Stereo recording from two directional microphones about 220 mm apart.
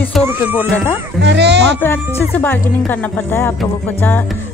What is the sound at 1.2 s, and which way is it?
Speech, 50° right (ahead or behind).